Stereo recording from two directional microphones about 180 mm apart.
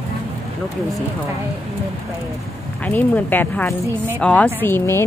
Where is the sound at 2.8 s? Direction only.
10° left (ahead or behind).